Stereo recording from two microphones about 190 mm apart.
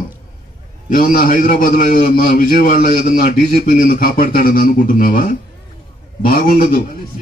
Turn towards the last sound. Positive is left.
turn(degrees=50)  # may be behind; listen again after turning